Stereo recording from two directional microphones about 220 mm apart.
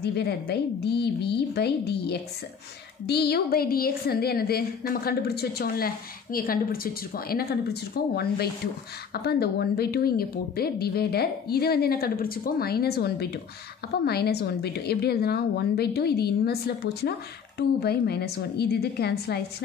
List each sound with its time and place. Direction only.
0.0 s a woman's voice: 50° left (ahead or behind)